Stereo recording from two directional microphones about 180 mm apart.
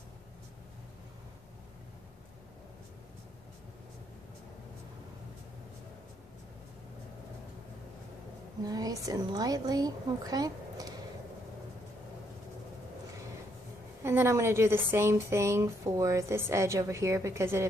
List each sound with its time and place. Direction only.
8.6 s a woman's voice: 20° right (ahead or behind)
14.0 s a woman's voice: 15° right (ahead or behind)